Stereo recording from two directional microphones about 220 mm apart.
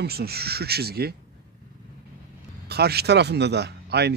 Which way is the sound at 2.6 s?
45° right (ahead or behind).